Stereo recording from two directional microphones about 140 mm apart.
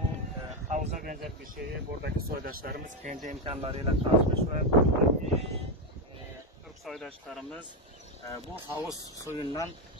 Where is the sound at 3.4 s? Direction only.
40° right (ahead or behind).